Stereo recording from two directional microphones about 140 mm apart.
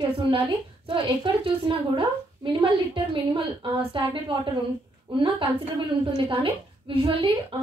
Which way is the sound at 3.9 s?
35° right (ahead or behind).